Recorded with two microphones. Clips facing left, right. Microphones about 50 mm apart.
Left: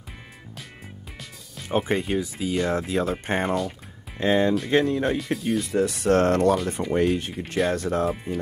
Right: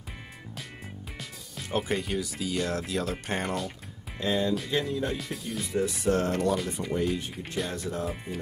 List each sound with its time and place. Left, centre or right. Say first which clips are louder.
1.7 s speech: left 5 dB; left
4.2 s speech: left 6 dB; left
4.6 s speech: left 8 dB; left
5.1 s speech: left 9 dB; left
5.7 s speech: left 4 dB; left